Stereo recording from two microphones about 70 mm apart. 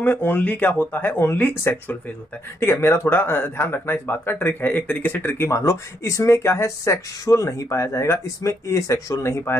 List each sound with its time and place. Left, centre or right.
0.0 s speech: left
5.6 s speech: left